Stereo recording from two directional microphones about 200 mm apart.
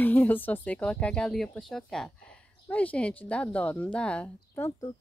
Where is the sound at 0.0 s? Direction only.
10° left (ahead or behind).